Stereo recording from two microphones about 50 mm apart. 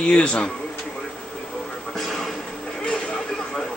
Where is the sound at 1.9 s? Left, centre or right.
Centre.